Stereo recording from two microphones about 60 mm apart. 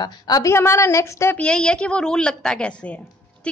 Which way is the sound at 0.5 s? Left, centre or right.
Left.